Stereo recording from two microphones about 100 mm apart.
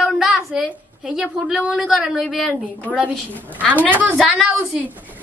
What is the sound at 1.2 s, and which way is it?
Speech, 5° right (ahead or behind).